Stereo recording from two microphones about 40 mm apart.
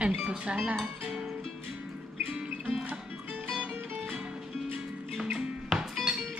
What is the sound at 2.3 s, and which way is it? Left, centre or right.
Music, right.